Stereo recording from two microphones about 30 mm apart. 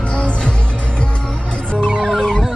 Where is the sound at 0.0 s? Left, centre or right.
Left.